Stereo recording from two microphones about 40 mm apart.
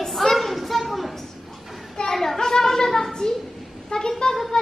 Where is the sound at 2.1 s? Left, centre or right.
Centre.